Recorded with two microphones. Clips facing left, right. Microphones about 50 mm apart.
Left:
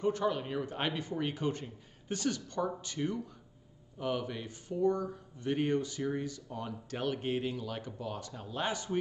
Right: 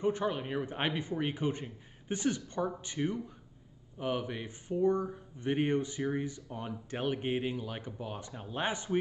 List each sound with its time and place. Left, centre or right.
0.0 s speech: right